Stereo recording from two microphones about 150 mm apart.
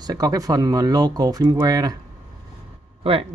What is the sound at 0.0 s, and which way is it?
Speech, 25° right (ahead or behind).